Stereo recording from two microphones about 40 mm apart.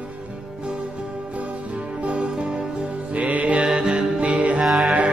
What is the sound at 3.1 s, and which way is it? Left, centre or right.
Music, right.